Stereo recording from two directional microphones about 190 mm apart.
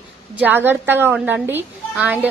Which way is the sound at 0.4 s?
10° right (ahead or behind).